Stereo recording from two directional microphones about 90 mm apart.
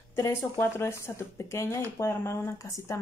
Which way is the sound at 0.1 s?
30° left (ahead or behind).